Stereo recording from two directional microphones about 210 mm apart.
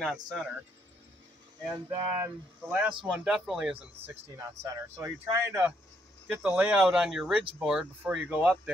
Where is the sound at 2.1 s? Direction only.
10° right (ahead or behind).